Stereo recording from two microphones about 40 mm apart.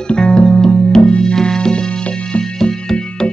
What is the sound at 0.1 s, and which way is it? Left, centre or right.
Music, left.